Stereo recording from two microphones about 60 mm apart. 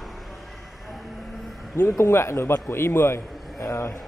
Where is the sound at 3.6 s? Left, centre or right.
Left.